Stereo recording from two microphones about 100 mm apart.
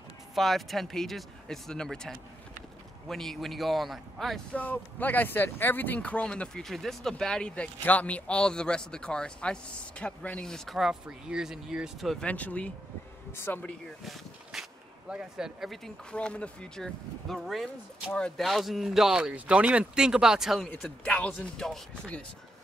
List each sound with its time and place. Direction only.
0.3 s speech: centre (ahead or behind)
4.6 s speech: 20° left (ahead or behind); by 12.3 s centre (ahead or behind)
12.3 s speech: 15° left (ahead or behind)
14.0 s speech: 5° right (ahead or behind)
20.8 s speech: 10° left (ahead or behind)